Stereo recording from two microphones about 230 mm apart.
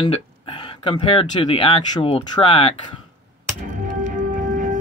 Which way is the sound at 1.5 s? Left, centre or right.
Left.